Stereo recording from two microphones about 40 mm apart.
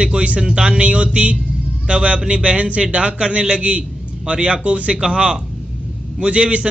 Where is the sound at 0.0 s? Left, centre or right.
Right.